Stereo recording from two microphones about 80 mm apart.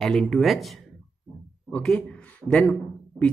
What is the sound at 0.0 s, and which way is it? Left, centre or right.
A man's voice, centre.